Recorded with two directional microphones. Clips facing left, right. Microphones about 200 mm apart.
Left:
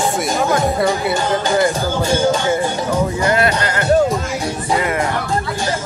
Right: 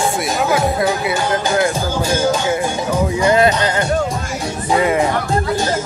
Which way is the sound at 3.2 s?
20° right (ahead or behind).